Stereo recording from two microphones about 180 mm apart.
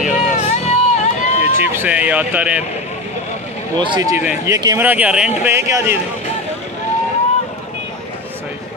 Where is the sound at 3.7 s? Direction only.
25° right (ahead or behind).